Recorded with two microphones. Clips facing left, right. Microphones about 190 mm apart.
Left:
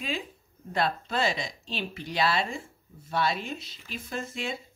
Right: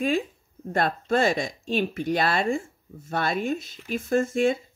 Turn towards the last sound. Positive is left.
turn(degrees=-50)  # may be behind; listen again after turning